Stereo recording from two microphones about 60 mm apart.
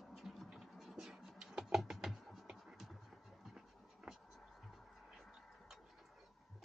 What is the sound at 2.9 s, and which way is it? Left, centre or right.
Scratch, centre.